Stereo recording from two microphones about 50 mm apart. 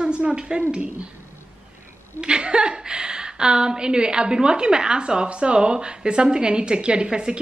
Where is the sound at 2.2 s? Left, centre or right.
Centre.